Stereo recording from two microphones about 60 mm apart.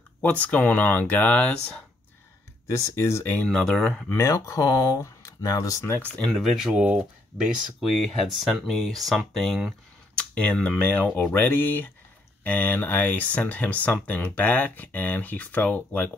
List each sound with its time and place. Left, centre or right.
0.2 s speech: left
2.6 s speech: left
3.4 s speech: centre
4.1 s speech: left
6.0 s speech: centre
6.3 s speech: centre
6.7 s speech: centre
7.8 s speech: centre
10.1 s speech: centre
11.3 s speech: left